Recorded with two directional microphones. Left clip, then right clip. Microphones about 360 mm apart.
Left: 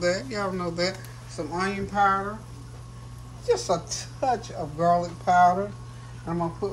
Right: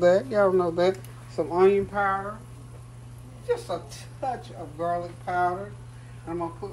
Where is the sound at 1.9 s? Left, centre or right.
Centre.